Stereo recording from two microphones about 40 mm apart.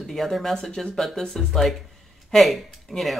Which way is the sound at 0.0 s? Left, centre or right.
Centre.